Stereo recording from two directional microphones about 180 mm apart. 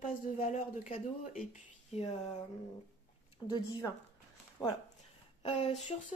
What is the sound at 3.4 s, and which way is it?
Speech, 25° left (ahead or behind).